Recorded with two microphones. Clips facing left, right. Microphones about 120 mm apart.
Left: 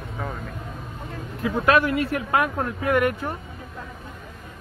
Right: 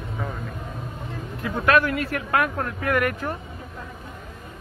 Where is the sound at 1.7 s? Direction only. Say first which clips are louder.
Even; 30° left (ahead or behind).